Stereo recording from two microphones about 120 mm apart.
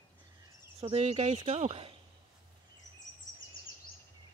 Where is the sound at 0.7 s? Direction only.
60° right (ahead or behind).